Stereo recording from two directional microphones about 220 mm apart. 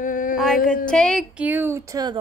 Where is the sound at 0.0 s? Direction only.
35° left (ahead or behind).